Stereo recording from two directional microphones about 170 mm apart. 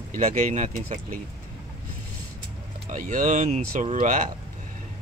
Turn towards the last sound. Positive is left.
turn(degrees=-45)  # may be behind; listen again after turning